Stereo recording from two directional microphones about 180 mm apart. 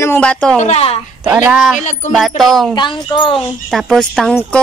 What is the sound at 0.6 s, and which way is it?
Speech, 40° left (ahead or behind).